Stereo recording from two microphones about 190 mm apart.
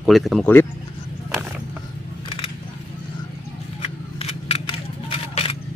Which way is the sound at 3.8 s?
30° left (ahead or behind).